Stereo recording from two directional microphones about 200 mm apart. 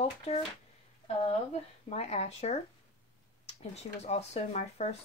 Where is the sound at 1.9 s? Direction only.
35° left (ahead or behind).